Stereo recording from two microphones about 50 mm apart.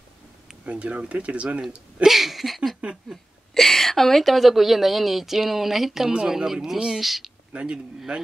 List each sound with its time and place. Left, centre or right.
0.7 s speech: right
2.0 s a woman's voice: centre
2.8 s a sound: centre
3.5 s a woman's voice: centre
7.5 s speech: right